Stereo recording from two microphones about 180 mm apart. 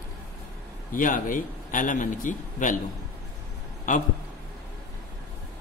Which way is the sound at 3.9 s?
45° left (ahead or behind).